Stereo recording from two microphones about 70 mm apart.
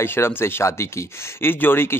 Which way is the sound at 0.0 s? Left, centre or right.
Left.